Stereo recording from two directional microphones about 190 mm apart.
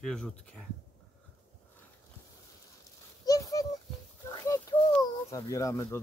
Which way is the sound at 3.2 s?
20° left (ahead or behind).